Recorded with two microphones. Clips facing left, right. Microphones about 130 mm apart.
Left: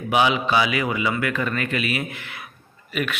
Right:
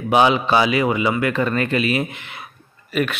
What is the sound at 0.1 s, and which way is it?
A man's voice, 35° right (ahead or behind).